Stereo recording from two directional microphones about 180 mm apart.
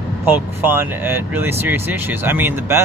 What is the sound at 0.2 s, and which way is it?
Speech, 10° right (ahead or behind).